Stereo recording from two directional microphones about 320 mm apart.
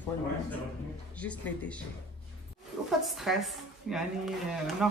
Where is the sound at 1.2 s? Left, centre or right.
Centre.